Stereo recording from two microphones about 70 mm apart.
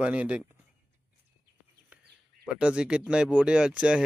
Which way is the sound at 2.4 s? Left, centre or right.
Centre.